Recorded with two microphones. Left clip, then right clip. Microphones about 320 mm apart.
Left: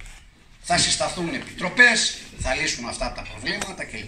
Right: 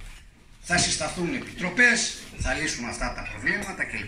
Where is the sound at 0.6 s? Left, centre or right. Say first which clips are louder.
Left 3 dB; centre.